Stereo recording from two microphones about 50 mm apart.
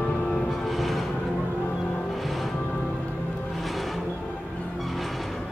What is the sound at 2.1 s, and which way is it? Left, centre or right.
Music, centre.